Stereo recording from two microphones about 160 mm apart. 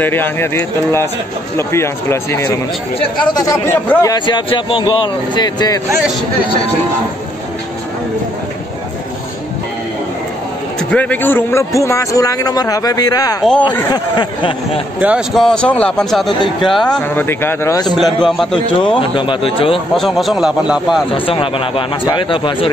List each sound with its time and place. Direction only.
0.0 s a man's voice: 15° left (ahead or behind)
10.9 s a man's voice: 10° left (ahead or behind)
13.4 s a man's voice: 5° left (ahead or behind)
13.9 s a man's voice: 30° left (ahead or behind)
15.0 s a man's voice: 5° right (ahead or behind); by 17.9 s 20° left (ahead or behind)
17.9 s a man's voice: centre (ahead or behind)
18.9 s a man's voice: 35° left (ahead or behind)
20.0 s a man's voice: centre (ahead or behind)
21.1 s a man's voice: 35° left (ahead or behind)